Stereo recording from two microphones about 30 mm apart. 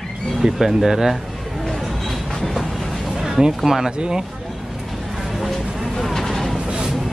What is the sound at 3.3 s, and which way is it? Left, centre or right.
Speech, centre.